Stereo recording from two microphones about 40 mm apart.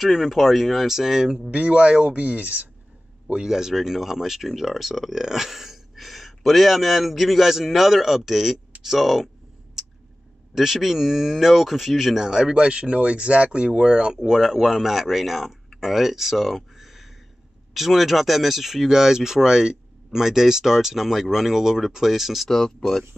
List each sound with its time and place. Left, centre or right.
0.0 s speech: centre
1.5 s speech: right
3.4 s speech: centre
10.5 s speech: centre
12.2 s speech: centre
14.4 s speech: centre